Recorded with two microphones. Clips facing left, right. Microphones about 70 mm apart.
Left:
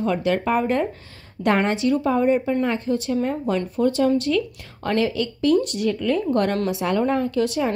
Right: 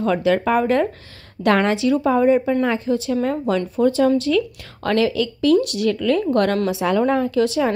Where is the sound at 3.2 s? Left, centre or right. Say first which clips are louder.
Right 3 dB; right.